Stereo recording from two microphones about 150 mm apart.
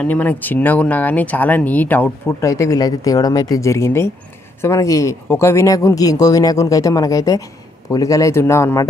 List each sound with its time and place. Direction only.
0.0 s speech: 10° left (ahead or behind)